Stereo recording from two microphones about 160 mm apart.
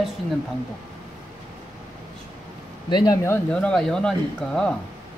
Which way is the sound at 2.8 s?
25° left (ahead or behind).